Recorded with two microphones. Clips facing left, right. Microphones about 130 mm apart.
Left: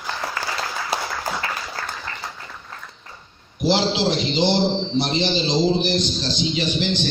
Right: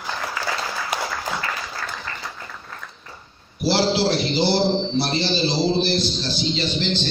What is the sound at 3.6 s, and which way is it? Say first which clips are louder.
A man's voice: even; 20° left (ahead or behind).